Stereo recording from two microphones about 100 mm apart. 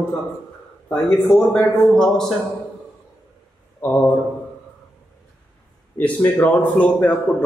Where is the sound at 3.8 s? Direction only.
20° left (ahead or behind).